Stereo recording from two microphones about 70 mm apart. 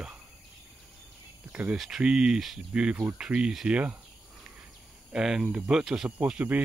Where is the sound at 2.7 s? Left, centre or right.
Centre.